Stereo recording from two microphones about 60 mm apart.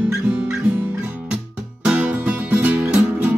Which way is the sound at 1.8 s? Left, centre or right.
Right.